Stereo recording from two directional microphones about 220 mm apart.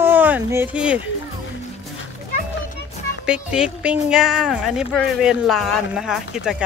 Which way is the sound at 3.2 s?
5° right (ahead or behind).